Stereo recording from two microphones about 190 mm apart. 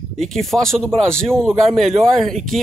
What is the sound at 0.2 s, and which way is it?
Speech, centre (ahead or behind).